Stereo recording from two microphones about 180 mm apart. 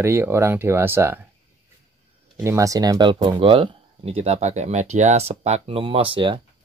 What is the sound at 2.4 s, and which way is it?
Speech, 15° right (ahead or behind).